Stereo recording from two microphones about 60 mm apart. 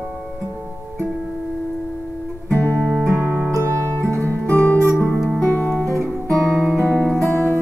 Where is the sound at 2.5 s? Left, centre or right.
Left.